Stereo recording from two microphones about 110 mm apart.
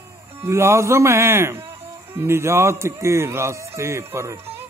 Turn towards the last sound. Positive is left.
turn(degrees=-25)  # may be behind; listen again after turning